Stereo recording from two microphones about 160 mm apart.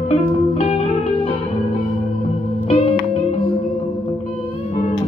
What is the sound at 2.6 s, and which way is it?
Music, 40° left (ahead or behind).